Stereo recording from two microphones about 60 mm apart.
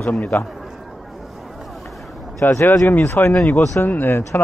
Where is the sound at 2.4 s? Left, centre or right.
Left.